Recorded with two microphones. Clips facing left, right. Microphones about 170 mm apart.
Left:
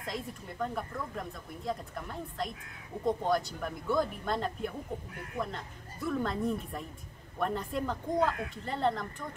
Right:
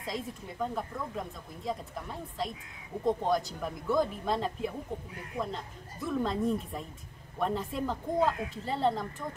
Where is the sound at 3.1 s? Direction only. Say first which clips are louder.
Right 1 dB; centre (ahead or behind).